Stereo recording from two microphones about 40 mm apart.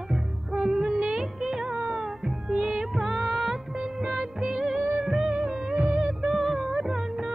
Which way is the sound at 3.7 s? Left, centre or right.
Centre.